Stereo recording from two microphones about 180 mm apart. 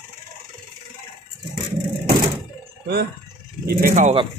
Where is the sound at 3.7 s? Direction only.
55° right (ahead or behind).